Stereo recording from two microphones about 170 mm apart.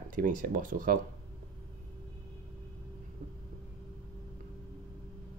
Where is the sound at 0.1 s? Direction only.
50° right (ahead or behind).